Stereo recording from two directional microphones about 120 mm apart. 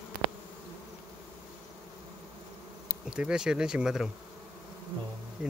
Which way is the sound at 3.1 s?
5° right (ahead or behind).